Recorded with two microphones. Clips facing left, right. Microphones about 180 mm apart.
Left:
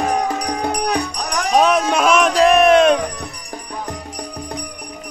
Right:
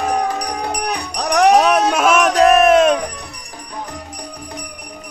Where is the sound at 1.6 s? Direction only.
5° right (ahead or behind).